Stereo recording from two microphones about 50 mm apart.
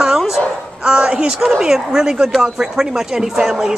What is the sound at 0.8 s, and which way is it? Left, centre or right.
Speech, centre.